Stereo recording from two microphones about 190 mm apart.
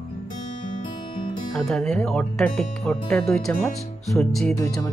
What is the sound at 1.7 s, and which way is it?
Speech, 5° left (ahead or behind).